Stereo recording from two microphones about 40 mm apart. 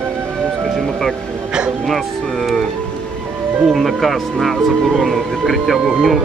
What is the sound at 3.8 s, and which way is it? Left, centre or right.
Speech, centre.